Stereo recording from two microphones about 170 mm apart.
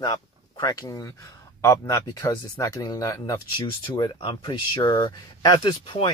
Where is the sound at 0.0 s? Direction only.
20° left (ahead or behind).